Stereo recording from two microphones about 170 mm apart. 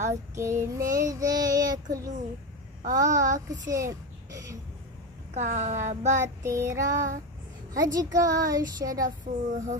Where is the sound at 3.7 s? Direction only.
20° right (ahead or behind).